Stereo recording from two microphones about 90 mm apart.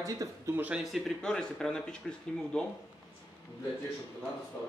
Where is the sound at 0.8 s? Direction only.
Centre (ahead or behind).